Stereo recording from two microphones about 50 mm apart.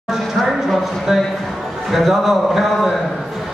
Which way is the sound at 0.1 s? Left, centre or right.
Centre.